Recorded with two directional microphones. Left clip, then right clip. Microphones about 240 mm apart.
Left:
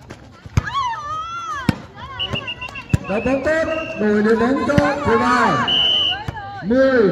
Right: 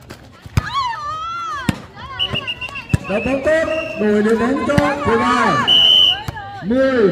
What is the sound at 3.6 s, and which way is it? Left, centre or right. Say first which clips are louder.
Speech: right 2 dB; centre.